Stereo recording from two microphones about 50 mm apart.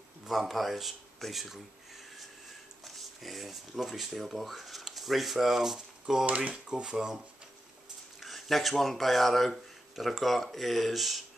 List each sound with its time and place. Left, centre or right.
0.2 s speech: centre
2.8 s speech: centre
6.2 s speech: right
6.5 s speech: centre
8.2 s speech: centre